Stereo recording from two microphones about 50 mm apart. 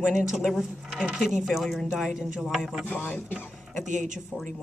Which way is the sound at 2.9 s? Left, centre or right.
Left.